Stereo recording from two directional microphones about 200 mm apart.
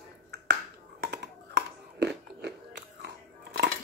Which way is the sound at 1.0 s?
55° right (ahead or behind).